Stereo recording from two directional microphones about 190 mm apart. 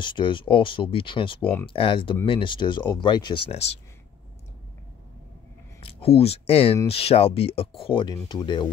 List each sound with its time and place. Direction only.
0.0 s speech: 25° left (ahead or behind)
5.8 s speech: 30° left (ahead or behind)